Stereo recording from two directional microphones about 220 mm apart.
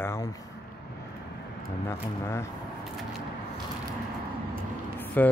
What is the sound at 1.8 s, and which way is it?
Speech, 10° left (ahead or behind).